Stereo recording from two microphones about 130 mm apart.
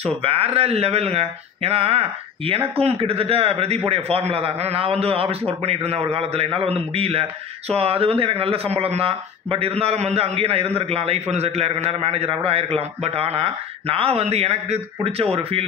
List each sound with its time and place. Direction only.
0.0 s a man's voice: 50° right (ahead or behind)